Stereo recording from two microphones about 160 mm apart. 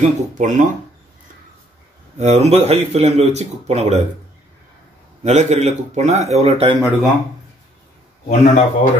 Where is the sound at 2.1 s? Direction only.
45° right (ahead or behind).